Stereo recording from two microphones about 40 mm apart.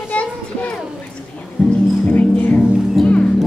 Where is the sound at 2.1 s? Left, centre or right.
Left.